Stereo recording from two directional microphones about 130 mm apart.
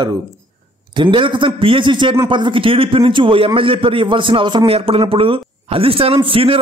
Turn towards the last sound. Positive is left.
turn(degrees=-45)  # may be behind; listen again after turning